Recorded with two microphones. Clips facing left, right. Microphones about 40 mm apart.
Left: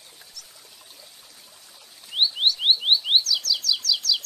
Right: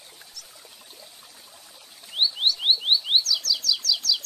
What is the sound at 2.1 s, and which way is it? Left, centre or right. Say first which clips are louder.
Chirp: left 2 dB; left.